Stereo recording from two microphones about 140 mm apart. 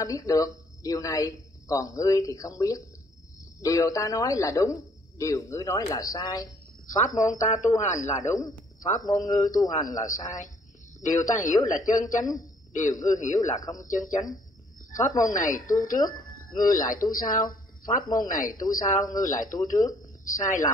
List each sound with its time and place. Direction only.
0.0 s a man's voice: 25° left (ahead or behind)
7.0 s speech: 65° left (ahead or behind)
8.7 s a sound: 65° left (ahead or behind)
9.4 s a man's voice: 25° left (ahead or behind)
9.8 s speech: 65° left (ahead or behind)
19.6 s a man's voice: 25° left (ahead or behind)
20.2 s speech: 65° left (ahead or behind)